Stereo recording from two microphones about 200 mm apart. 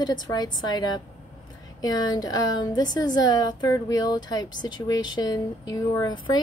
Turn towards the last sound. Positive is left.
turn(degrees=20)  # may be behind; listen again after turning